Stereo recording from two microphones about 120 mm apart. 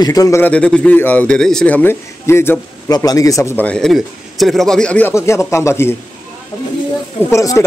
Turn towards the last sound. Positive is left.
turn(degrees=30)  # may be behind; listen again after turning